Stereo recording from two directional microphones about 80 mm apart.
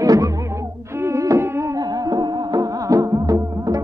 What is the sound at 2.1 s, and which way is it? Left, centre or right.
Music, right.